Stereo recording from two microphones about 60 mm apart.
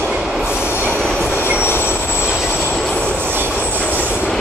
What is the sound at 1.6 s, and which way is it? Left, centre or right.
Train, left.